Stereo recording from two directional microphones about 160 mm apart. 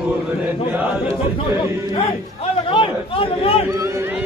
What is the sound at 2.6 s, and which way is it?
Speech, 35° left (ahead or behind).